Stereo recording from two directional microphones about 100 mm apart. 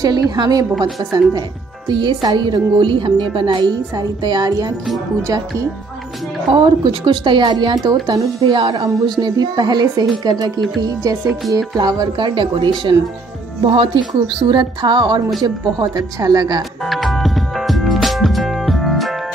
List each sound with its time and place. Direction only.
0.0 s a woman's voice: 45° right (ahead or behind)
6.5 s a woman's voice: 55° right (ahead or behind)
13.7 s a woman's voice: 65° right (ahead or behind); by 16.6 s 40° right (ahead or behind)
16.8 s music: centre (ahead or behind)